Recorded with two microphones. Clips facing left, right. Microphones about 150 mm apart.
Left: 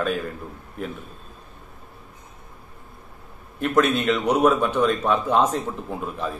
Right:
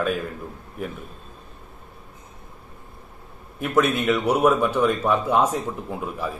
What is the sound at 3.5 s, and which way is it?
A man's voice, 10° right (ahead or behind).